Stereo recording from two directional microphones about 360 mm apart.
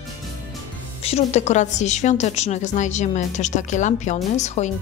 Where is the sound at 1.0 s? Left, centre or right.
Centre.